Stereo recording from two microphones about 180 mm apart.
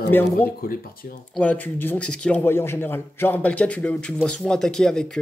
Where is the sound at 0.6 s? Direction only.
55° left (ahead or behind).